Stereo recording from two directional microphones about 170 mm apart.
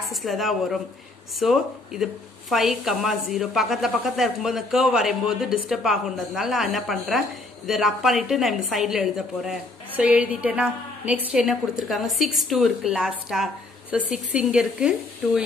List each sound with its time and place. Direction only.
0.0 s a woman's voice: centre (ahead or behind)